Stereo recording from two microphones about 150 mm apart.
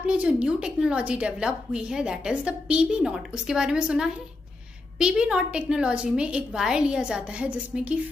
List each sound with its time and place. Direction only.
0.0 s a woman's voice: 10° right (ahead or behind)